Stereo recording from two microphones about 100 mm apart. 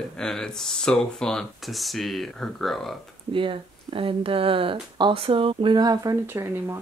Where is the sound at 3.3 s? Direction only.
60° right (ahead or behind).